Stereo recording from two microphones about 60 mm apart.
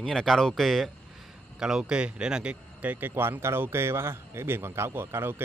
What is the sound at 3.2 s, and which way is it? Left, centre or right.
A man's voice, right.